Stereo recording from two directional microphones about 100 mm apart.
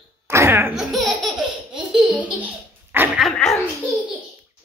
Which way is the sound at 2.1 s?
15° right (ahead or behind).